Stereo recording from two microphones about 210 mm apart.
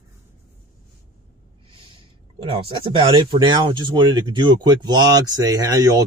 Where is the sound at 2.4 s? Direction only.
25° right (ahead or behind).